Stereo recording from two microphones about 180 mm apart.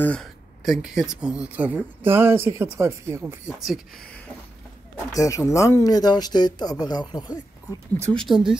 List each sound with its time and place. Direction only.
0.0 s speech: 5° left (ahead or behind); by 3.3 s 15° right (ahead or behind)
3.4 s speech: centre (ahead or behind)
5.1 s speech: 15° left (ahead or behind)
8.1 s speech: centre (ahead or behind)